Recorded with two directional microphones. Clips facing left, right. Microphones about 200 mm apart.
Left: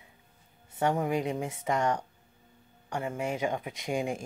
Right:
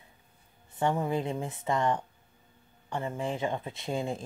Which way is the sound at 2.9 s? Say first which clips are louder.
Even; 15° left (ahead or behind).